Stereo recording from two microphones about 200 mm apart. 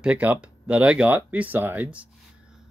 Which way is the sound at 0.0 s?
5° right (ahead or behind).